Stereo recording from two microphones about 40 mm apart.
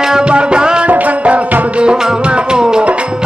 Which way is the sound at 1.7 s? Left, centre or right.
Right.